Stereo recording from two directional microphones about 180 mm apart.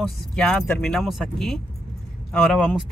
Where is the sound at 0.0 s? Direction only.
Centre (ahead or behind).